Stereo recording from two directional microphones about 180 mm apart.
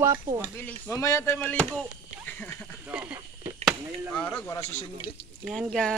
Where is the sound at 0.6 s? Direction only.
10° left (ahead or behind).